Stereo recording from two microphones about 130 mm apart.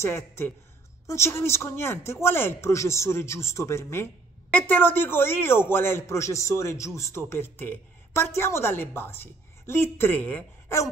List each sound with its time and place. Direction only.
0.0 s speech: 20° left (ahead or behind)